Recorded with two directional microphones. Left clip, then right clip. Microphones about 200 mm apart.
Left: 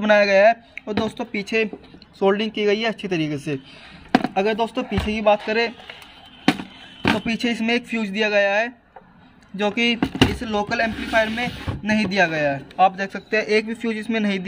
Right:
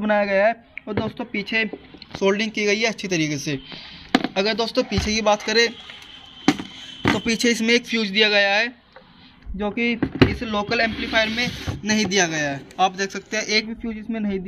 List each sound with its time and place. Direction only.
0.0 s speech: 15° left (ahead or behind)
2.1 s speech: 5° right (ahead or behind)
7.2 s speech: 10° right (ahead or behind)
11.8 s a man's voice: 20° left (ahead or behind)